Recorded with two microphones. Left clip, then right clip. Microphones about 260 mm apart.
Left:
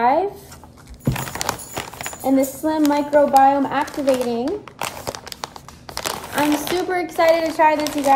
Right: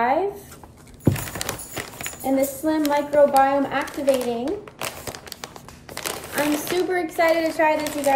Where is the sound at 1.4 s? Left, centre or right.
Centre.